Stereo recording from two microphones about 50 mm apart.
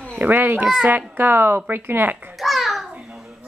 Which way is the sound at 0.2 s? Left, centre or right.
Right.